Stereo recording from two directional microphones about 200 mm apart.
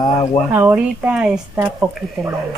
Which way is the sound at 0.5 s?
10° right (ahead or behind).